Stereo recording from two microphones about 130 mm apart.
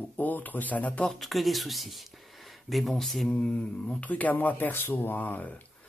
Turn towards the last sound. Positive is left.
turn(degrees=15)  # may be behind; listen again after turning